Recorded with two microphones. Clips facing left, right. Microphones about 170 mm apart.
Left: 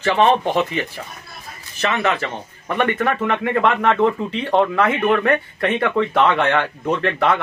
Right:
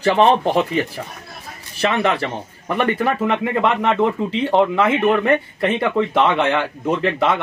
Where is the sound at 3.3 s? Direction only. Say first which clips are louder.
Even; 15° right (ahead or behind).